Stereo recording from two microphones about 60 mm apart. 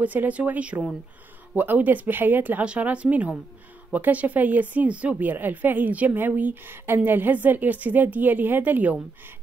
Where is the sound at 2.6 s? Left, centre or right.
Right.